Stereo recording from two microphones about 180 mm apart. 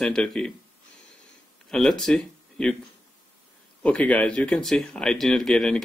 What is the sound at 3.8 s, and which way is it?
Speech, 5° left (ahead or behind).